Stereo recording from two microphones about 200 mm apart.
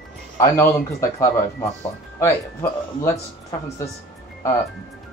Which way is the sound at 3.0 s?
15° left (ahead or behind).